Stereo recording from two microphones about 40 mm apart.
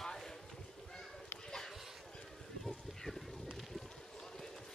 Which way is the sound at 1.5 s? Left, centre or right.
Centre.